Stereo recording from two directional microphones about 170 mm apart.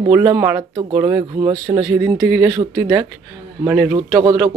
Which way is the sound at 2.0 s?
10° right (ahead or behind).